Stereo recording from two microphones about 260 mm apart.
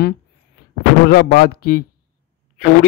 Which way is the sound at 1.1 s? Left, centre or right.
Left.